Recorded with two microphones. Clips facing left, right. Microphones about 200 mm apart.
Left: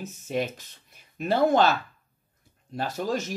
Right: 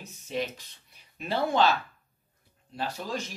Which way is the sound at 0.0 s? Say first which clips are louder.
Left 4 dB; 50° left (ahead or behind).